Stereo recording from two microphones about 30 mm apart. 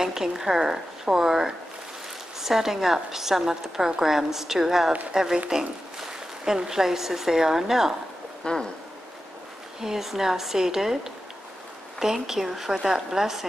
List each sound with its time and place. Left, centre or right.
0.0 s a woman's voice: centre
8.5 s a sound: left
9.8 s a woman's voice: centre
12.0 s a woman's voice: centre